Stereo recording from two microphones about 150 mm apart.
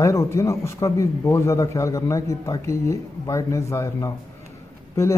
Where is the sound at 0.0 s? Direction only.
20° left (ahead or behind).